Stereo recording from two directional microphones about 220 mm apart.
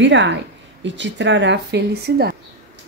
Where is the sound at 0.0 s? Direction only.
55° right (ahead or behind).